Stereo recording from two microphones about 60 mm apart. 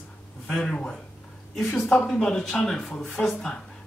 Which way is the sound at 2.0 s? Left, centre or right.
Centre.